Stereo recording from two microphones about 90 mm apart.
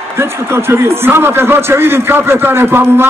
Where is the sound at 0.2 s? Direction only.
25° right (ahead or behind).